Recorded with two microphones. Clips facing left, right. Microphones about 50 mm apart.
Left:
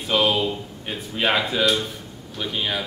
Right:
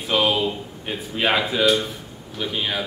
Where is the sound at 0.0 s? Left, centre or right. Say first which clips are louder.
Even; centre.